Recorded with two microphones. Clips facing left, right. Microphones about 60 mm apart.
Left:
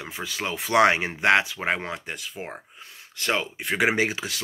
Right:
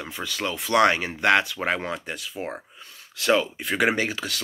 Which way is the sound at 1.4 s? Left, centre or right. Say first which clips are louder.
Right 1 dB; centre.